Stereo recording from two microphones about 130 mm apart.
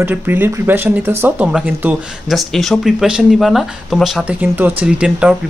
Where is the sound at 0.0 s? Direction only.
15° right (ahead or behind).